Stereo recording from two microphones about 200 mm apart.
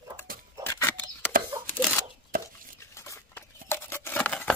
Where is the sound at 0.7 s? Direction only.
10° left (ahead or behind).